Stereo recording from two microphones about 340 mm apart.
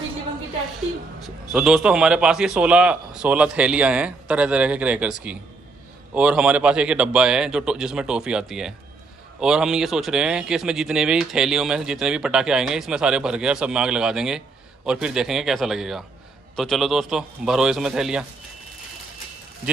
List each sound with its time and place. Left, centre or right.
1.2 s speech: centre